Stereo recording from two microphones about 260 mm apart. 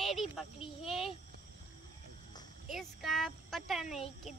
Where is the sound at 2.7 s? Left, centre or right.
Centre.